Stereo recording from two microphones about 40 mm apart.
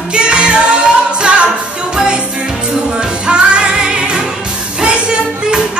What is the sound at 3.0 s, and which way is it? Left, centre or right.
Music, right.